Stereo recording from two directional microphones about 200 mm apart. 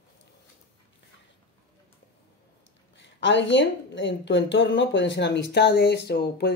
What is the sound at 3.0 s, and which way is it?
A woman's voice, 65° left (ahead or behind).